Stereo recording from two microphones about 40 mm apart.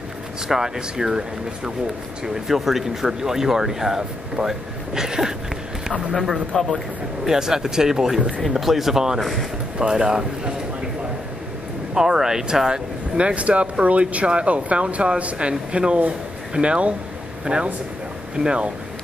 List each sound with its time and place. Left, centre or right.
0.5 s speech: centre
6.5 s speech: centre
7.2 s speech: centre
9.2 s speech: centre
9.8 s speech: centre
11.9 s speech: centre
13.2 s speech: right